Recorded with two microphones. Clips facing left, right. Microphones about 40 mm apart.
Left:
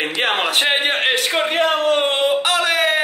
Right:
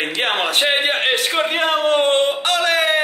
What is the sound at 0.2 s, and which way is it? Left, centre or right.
Speech, centre.